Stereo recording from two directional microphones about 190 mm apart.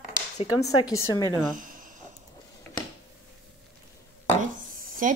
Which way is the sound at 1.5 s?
45° right (ahead or behind).